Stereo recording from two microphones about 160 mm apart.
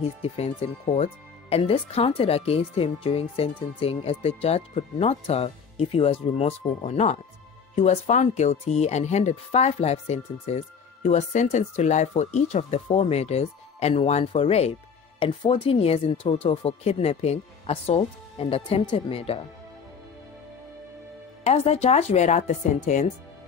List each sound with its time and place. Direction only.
0.2 s speech: 40° left (ahead or behind)
21.5 s speech: 40° left (ahead or behind)